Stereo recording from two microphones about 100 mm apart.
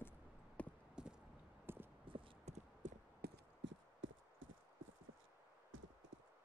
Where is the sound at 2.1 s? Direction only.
75° right (ahead or behind).